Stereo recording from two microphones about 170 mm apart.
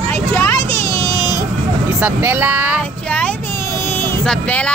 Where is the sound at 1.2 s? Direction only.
25° left (ahead or behind).